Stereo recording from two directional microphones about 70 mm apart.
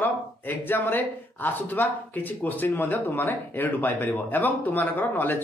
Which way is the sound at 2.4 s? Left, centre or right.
Left.